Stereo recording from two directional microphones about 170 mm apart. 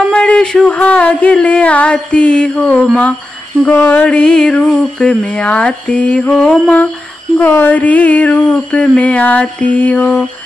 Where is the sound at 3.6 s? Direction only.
10° left (ahead or behind).